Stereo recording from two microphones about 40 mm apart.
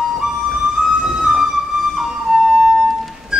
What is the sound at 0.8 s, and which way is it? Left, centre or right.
Music, centre.